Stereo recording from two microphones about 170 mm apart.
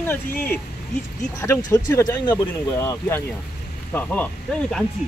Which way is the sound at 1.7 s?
20° left (ahead or behind).